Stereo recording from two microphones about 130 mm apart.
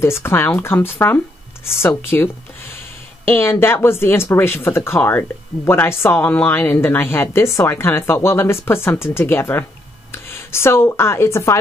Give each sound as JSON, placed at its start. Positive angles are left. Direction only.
{"t": 0.0, "sound": "speech", "side_deg": 20}